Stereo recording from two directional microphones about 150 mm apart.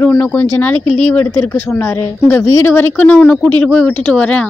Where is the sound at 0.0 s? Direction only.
10° left (ahead or behind).